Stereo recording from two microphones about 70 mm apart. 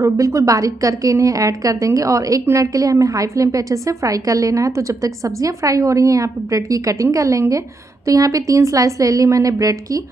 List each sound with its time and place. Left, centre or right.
0.0 s a woman's voice: right